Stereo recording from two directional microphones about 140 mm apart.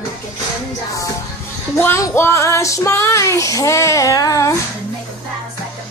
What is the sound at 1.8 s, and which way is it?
Child singing, 15° left (ahead or behind).